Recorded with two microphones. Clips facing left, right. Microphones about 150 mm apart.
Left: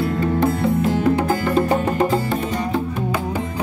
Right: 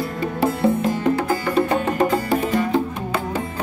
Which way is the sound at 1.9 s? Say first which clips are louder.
Even; centre (ahead or behind).